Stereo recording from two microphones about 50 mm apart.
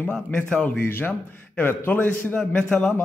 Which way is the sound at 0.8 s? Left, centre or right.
Left.